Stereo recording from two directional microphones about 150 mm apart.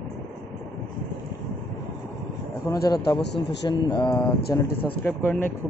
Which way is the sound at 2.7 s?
25° left (ahead or behind).